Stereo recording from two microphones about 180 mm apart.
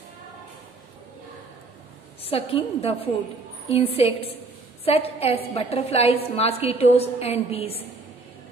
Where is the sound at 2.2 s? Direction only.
30° left (ahead or behind).